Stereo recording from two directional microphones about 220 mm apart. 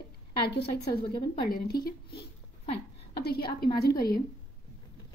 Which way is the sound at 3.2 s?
45° left (ahead or behind).